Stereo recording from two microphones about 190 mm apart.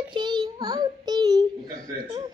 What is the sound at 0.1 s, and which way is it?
Child singing, 25° right (ahead or behind).